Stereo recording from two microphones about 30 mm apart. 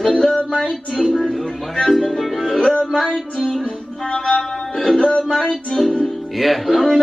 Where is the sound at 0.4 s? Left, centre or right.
Left.